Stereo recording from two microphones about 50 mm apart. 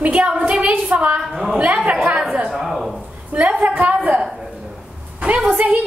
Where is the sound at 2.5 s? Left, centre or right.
Centre.